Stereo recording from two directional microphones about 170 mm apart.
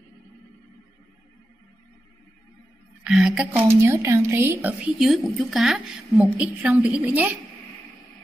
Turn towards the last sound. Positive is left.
turn(degrees=-10)  # may be behind; listen again after turning